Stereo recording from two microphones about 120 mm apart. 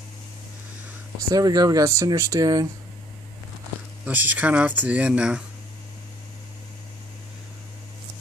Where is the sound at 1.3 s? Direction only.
30° right (ahead or behind).